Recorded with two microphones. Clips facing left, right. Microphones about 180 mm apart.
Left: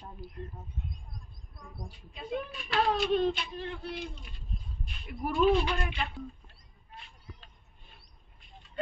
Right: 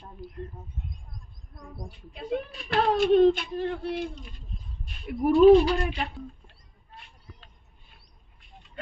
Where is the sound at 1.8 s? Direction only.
55° right (ahead or behind).